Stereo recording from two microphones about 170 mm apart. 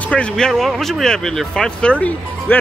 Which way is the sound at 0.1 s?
5° left (ahead or behind).